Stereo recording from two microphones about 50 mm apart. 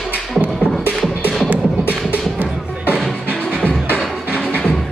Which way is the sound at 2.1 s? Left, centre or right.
Right.